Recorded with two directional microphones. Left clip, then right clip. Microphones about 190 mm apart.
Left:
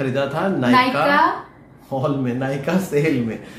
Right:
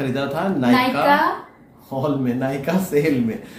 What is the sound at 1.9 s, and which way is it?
Speech, 20° left (ahead or behind).